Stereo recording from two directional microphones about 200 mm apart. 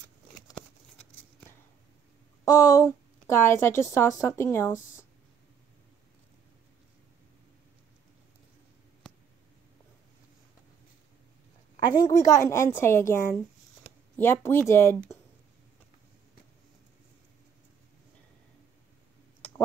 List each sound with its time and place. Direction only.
2.4 s a woman's voice: 15° left (ahead or behind)
12.0 s a woman's voice: 15° left (ahead or behind)